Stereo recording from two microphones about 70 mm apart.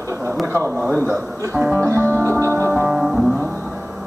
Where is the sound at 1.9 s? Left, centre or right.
Right.